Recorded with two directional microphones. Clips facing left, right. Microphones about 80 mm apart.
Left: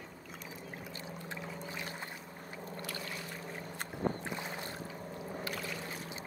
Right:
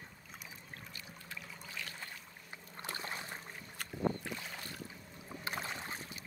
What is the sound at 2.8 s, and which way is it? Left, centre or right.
Boat, right.